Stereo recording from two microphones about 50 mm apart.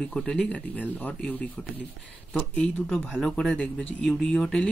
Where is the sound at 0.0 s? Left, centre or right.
Centre.